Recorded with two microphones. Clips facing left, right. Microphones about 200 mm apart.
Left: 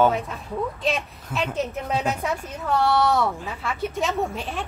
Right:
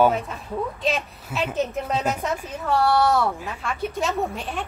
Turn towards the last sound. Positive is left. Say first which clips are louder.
# even
turn(degrees=0)  # may be behind; listen again after turning